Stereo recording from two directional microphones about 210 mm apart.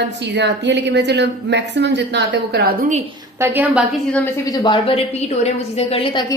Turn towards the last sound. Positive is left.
turn(degrees=25)  # may be behind; listen again after turning